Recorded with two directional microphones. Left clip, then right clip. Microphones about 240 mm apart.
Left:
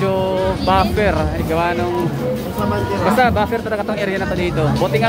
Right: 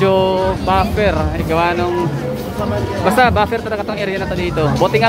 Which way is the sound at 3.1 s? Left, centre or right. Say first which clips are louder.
Right 3 dB; centre.